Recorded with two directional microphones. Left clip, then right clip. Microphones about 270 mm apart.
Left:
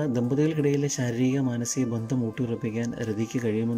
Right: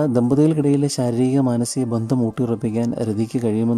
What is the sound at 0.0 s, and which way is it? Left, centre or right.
Speech, centre.